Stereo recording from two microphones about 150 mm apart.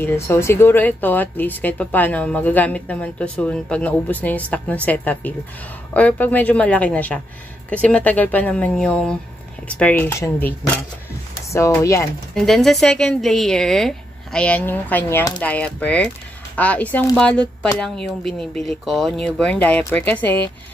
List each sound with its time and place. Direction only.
0.0 s speech: 15° left (ahead or behind)
11.5 s speech: 20° left (ahead or behind)
12.4 s speech: centre (ahead or behind)